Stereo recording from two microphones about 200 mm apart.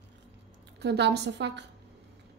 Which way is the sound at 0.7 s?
60° right (ahead or behind).